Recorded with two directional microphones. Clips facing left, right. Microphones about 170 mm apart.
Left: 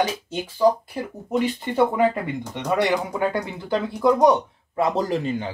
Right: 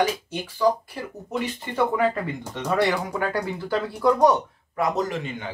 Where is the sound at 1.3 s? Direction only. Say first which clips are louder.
Left 6 dB; 20° left (ahead or behind); by 5.5 s 35° left (ahead or behind).